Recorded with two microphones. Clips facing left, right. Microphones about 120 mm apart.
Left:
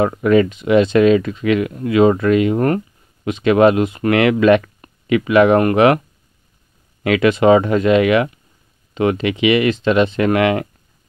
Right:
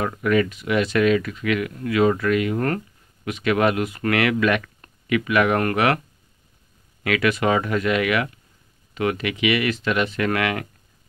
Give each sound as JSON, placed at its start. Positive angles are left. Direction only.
{"t": 0.0, "sound": "speech", "side_deg": 25}
{"t": 7.0, "sound": "speech", "side_deg": 25}